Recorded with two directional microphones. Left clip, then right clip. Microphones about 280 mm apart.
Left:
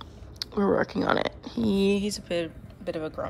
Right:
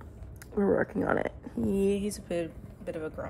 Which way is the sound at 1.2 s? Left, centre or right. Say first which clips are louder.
Left 4 dB; right.